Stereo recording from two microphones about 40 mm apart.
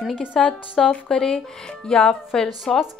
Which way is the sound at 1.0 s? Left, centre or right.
Centre.